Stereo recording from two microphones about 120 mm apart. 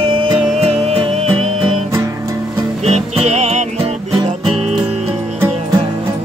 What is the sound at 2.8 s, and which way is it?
Music, 65° right (ahead or behind).